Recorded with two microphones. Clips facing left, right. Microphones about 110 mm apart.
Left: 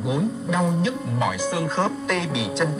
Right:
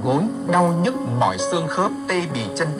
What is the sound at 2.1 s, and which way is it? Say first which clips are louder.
Speech: right 2 dB; centre (ahead or behind).